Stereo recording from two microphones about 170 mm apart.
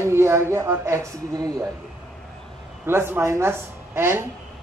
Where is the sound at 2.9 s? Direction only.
15° right (ahead or behind).